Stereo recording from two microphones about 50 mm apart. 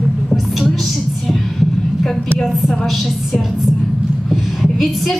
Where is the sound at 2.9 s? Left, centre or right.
Centre.